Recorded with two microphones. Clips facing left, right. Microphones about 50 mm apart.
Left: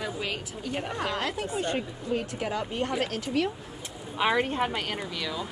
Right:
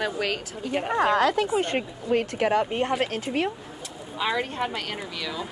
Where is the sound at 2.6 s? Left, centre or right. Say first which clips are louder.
Right 4 dB; right.